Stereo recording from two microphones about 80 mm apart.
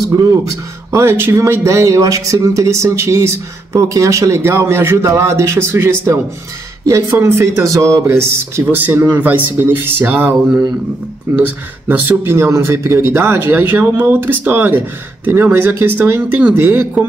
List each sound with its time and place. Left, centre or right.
0.0 s speech: right
11.9 s speech: right